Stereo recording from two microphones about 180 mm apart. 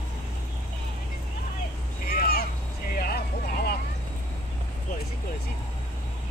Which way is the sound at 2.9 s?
60° left (ahead or behind).